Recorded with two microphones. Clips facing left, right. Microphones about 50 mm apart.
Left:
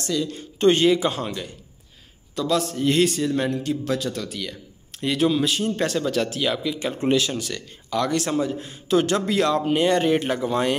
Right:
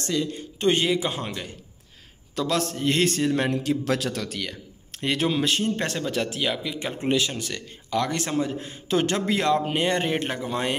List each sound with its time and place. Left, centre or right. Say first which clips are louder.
0.0 s speech: left 1 dB; right
0.6 s speech: left 5 dB; centre
2.5 s a man's voice: left 4 dB; right
2.8 s speech: left 4 dB; right
3.1 s a man's voice: even; right
3.6 s a man's voice: even; right
5.8 s speech: left 4 dB; right